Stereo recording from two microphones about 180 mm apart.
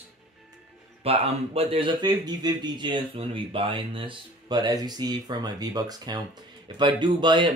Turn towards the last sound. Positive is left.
turn(degrees=-25)  # may be behind; listen again after turning